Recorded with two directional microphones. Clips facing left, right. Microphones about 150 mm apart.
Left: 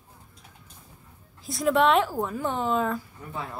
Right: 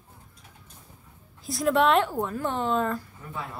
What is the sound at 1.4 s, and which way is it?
A woman's voice, centre (ahead or behind).